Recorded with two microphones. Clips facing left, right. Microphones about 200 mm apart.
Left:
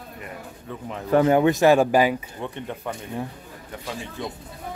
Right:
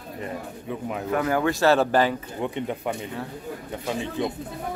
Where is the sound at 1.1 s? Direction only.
25° left (ahead or behind).